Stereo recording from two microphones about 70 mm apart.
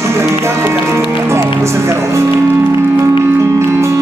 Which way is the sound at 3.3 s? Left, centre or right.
Right.